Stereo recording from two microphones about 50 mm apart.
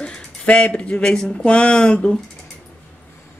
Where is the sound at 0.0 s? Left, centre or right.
Left.